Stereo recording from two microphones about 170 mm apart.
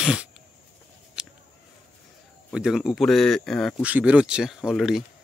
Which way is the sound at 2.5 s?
5° right (ahead or behind).